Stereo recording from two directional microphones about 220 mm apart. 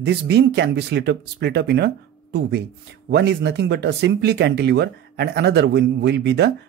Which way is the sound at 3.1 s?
50° right (ahead or behind).